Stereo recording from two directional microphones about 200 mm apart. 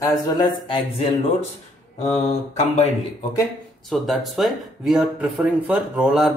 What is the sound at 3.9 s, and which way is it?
Speech, centre (ahead or behind).